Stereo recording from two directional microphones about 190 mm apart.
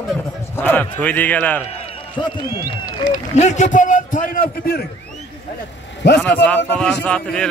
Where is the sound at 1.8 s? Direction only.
25° left (ahead or behind).